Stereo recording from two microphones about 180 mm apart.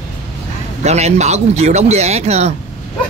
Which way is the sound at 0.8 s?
40° right (ahead or behind).